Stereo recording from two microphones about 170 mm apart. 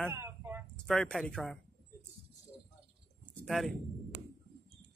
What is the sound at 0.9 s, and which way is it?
Speech, 5° left (ahead or behind).